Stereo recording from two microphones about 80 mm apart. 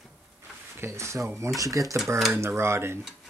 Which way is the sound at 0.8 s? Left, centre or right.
Right.